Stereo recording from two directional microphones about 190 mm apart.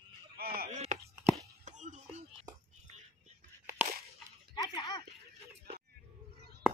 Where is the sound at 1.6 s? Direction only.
40° right (ahead or behind).